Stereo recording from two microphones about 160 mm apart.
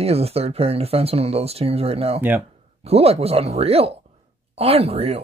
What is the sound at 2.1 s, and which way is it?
Speech, 10° right (ahead or behind).